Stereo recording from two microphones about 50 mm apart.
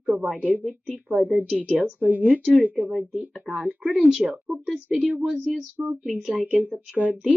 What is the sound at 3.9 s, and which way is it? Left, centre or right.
Speech, centre.